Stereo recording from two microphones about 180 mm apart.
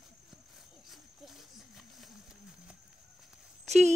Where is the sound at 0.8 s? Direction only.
Centre (ahead or behind).